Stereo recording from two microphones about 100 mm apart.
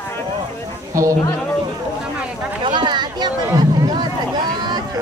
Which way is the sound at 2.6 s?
50° right (ahead or behind).